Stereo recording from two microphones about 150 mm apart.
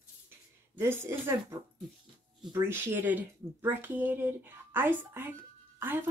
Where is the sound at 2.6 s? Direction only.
15° right (ahead or behind).